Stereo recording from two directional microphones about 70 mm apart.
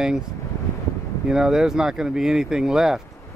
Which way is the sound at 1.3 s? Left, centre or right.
Centre.